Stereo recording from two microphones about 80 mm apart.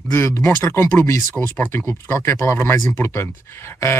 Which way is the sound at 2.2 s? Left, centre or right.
Left.